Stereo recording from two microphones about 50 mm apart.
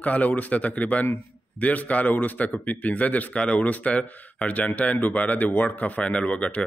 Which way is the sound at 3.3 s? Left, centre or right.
Left.